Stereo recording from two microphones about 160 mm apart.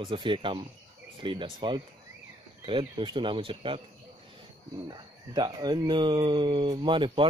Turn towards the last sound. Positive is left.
turn(degrees=-30)  # may be behind; listen again after turning